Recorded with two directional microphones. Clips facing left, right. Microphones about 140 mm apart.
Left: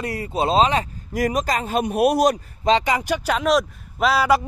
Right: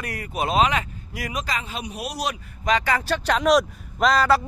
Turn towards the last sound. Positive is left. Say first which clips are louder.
# left 1 dB
turn(degrees=10)  # may be behind; listen again after turning